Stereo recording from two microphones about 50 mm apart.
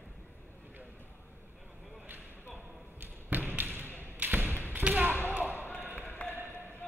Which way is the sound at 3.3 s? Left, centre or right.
Right.